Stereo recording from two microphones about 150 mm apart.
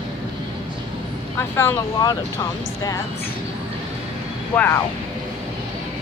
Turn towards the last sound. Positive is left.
turn(degrees=15)  # may be behind; listen again after turning